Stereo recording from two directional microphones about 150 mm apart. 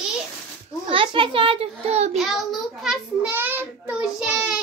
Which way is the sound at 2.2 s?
Centre (ahead or behind).